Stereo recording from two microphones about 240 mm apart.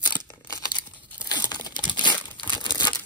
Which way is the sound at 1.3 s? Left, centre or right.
Centre.